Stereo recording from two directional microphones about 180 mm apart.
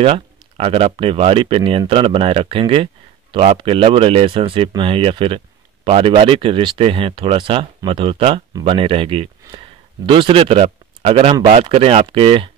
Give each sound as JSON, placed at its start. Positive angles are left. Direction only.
{"t": 0.0, "sound": "speech", "side_deg": -35}